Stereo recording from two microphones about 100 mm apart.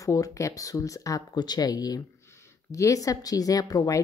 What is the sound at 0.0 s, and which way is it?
A woman's voice, 35° left (ahead or behind).